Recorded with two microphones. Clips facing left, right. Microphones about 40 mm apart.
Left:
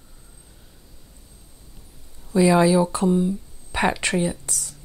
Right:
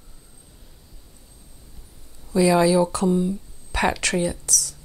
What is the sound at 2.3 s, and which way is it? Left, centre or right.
Speech, centre.